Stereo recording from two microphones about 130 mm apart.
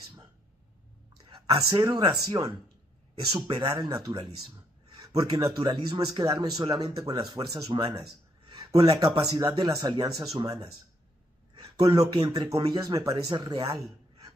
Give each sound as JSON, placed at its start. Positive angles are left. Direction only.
{"t": 1.2, "sound": "speech", "side_deg": -35}
{"t": 3.4, "sound": "a man's voice", "side_deg": -35}
{"t": 11.7, "sound": "a man's voice", "side_deg": -30}